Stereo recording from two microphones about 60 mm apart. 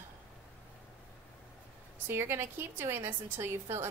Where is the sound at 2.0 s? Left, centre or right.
Right.